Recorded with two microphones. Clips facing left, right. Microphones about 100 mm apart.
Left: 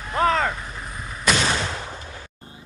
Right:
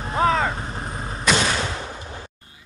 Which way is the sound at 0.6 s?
35° right (ahead or behind).